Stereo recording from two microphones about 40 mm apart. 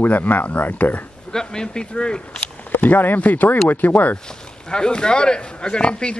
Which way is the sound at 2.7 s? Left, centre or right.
Left.